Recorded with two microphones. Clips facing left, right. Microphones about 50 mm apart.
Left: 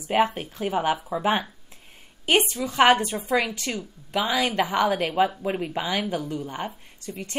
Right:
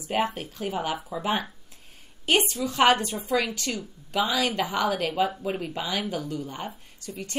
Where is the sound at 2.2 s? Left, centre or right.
Centre.